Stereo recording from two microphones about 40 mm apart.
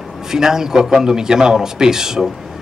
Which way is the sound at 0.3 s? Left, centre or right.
Centre.